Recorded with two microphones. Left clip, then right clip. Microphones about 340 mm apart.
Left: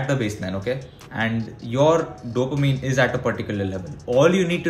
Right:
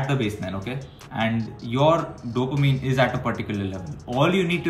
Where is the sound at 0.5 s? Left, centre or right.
Centre.